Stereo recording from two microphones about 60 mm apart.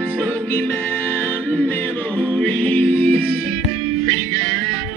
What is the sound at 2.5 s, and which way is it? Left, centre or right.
Music, left.